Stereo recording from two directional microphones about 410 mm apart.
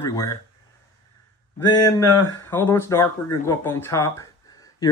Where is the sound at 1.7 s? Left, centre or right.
Centre.